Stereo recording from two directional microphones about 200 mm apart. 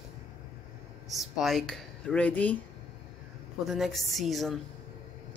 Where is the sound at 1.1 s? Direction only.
Centre (ahead or behind).